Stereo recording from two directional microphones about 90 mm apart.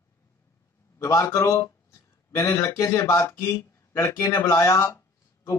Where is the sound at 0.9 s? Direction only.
35° left (ahead or behind).